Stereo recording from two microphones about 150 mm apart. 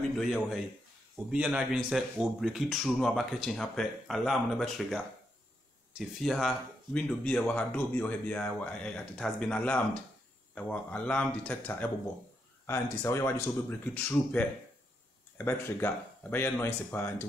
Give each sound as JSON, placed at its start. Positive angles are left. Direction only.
{"t": 0.2, "sound": "speech", "side_deg": 0}